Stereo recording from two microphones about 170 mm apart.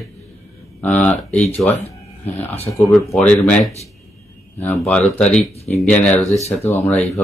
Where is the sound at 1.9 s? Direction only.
40° left (ahead or behind).